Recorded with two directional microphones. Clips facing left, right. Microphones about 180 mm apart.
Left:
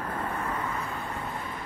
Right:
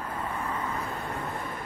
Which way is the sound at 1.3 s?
55° right (ahead or behind).